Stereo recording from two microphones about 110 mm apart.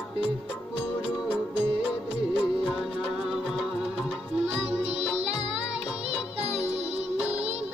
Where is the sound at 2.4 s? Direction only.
5° right (ahead or behind).